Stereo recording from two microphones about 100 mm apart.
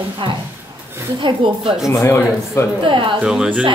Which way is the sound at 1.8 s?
30° left (ahead or behind).